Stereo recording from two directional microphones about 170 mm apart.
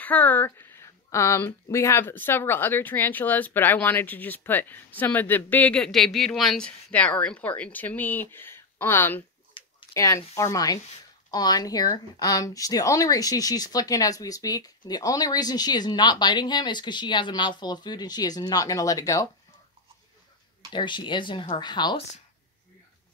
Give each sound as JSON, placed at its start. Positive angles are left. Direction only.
{"t": 0.0, "sound": "speech", "side_deg": 10}
{"t": 9.5, "sound": "speech", "side_deg": 25}
{"t": 20.7, "sound": "speech", "side_deg": 30}